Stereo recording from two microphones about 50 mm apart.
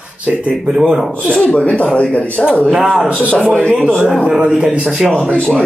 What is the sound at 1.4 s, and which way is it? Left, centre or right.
Speech, left.